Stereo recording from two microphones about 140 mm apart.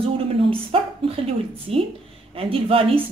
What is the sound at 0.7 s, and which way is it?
A woman's voice, 40° right (ahead or behind).